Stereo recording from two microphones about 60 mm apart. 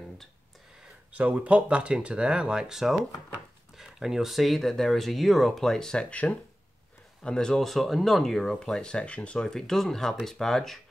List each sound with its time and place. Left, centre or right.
1.1 s speech: right; by 6.1 s centre
7.2 s speech: centre